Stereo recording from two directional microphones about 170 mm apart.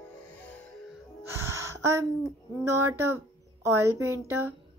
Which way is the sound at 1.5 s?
15° right (ahead or behind).